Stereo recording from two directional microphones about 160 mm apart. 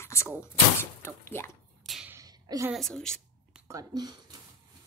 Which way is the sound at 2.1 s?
25° right (ahead or behind).